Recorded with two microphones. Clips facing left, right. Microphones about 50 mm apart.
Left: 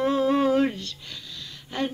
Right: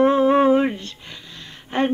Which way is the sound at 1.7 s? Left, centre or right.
Right.